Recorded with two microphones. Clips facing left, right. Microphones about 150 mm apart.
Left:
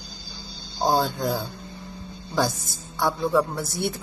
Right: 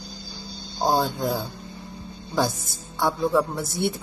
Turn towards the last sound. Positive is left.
turn(degrees=-20)  # may be behind; listen again after turning